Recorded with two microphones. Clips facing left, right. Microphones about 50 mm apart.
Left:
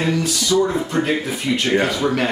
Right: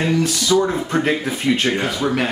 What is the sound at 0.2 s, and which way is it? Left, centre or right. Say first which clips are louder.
Speech: right 1 dB; right.